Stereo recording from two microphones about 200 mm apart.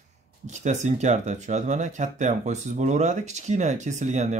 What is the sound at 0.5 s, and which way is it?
Speech, 35° right (ahead or behind).